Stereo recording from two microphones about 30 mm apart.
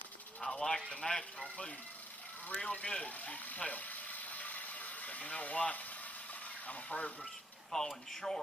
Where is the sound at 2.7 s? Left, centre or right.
Left.